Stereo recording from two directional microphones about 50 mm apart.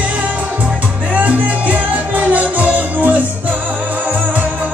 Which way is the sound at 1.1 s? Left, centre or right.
Right.